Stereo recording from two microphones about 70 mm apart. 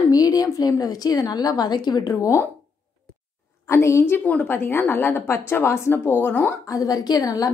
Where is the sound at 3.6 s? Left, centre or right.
Left.